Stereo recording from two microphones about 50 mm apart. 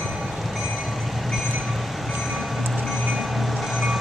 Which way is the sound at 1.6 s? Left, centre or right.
Centre.